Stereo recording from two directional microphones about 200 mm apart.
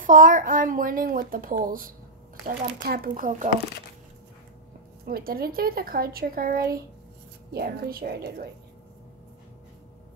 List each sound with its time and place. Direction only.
0.0 s a child's voice: 40° right (ahead or behind)
5.0 s a child's voice: 50° right (ahead or behind)